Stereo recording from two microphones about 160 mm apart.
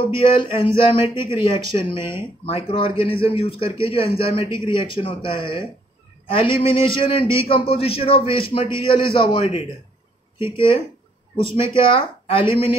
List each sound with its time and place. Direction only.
0.1 s a man's voice: 35° left (ahead or behind)